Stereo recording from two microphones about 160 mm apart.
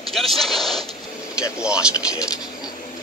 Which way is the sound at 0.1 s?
Centre (ahead or behind).